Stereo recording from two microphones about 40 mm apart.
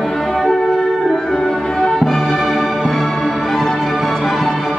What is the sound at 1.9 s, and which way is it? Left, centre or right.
Music, centre.